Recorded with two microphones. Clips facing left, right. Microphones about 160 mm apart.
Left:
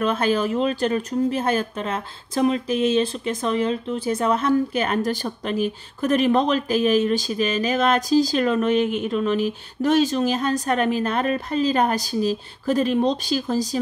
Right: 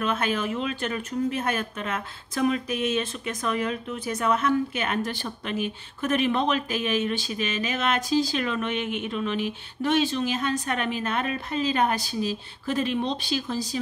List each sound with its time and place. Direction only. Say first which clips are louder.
0.0 s speech: left 6 dB; 35° left (ahead or behind)